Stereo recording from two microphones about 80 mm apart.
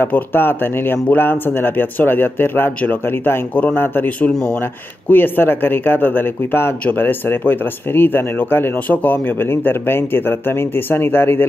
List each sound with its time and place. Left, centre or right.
0.0 s speech: left